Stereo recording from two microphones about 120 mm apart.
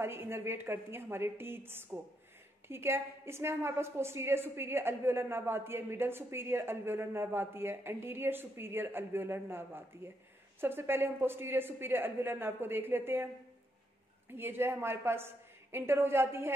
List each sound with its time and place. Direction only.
0.0 s a woman's voice: 20° right (ahead or behind)
14.3 s a woman's voice: 20° right (ahead or behind)